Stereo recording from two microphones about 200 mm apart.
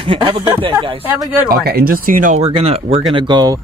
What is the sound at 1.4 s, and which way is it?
Speech, 50° right (ahead or behind).